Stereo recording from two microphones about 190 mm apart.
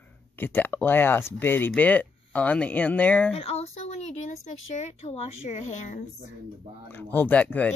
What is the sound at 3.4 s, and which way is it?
Speech, 30° left (ahead or behind).